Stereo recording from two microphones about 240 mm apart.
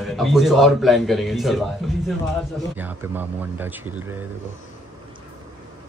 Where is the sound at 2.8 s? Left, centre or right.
Centre.